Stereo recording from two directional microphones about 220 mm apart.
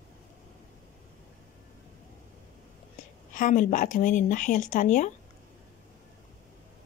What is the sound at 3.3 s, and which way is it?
Speech, 35° left (ahead or behind).